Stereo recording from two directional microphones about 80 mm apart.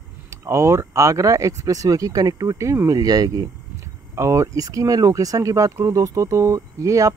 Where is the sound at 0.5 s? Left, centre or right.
Right.